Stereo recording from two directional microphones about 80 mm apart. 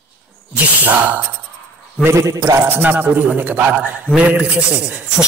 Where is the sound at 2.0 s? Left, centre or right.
Right.